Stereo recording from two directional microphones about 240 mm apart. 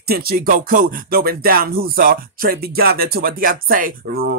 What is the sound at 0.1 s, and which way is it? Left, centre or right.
Music, right.